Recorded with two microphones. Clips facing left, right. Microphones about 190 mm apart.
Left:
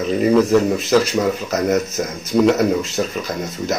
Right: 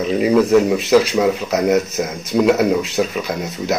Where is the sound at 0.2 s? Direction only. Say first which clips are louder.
Right 1 dB; 5° right (ahead or behind).